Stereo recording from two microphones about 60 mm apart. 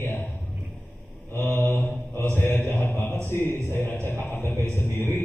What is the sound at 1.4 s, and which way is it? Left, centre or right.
Mantra, left.